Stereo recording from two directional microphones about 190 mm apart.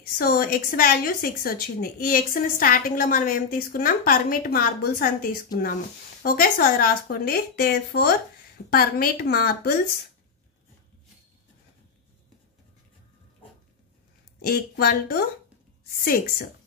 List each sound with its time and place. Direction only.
0.0 s a woman's voice: 50° left (ahead or behind)
14.4 s a woman's voice: 55° left (ahead or behind)